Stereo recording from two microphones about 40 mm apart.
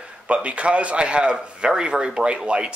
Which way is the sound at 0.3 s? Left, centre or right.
Right.